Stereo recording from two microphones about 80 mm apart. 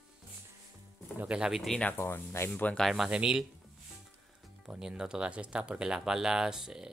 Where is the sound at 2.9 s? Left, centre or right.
Centre.